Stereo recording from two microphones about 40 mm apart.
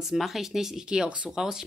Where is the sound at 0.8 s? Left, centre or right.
Right.